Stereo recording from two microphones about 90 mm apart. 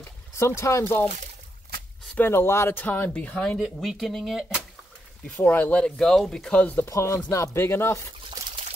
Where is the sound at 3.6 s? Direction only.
Centre (ahead or behind).